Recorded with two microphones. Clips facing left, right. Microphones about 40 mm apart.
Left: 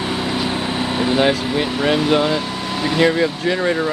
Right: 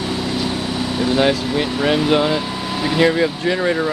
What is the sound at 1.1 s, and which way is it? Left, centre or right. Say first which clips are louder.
Speech: right 1 dB; centre.